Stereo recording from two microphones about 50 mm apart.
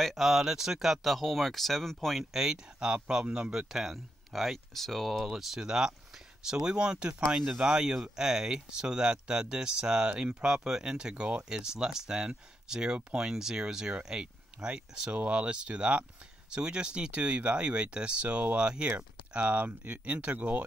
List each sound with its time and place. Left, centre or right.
0.0 s speech: centre
2.3 s speech: centre
3.5 s speech: centre
5.3 s speech: centre; by 20.6 s right